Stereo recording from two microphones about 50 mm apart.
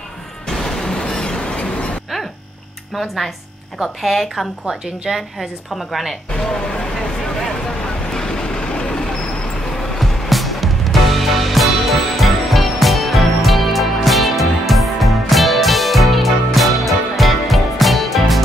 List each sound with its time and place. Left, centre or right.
0.5 s a sound: centre
3.8 s speech: centre
4.6 s a woman's voice: centre
6.3 s a sound: centre
8.1 s vehicle: centre
9.9 s music: centre